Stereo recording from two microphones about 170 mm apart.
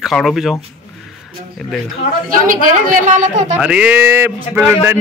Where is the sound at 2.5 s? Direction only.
50° right (ahead or behind).